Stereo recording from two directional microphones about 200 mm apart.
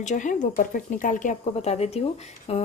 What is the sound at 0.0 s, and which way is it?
A woman's voice, 40° left (ahead or behind).